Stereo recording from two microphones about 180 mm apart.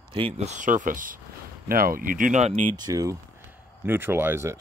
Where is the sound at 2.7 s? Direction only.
20° right (ahead or behind).